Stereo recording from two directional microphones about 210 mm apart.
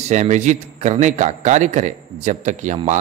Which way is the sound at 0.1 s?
35° right (ahead or behind).